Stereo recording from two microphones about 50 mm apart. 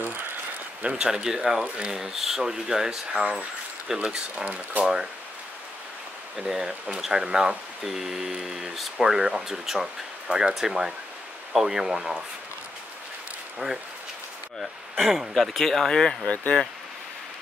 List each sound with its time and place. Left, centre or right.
0.8 s speech: centre
1.6 s speech: right
2.0 s speech: centre
4.5 s speech: right
6.3 s speech: centre
13.6 s speech: right
14.6 s speech: centre
16.3 s speech: left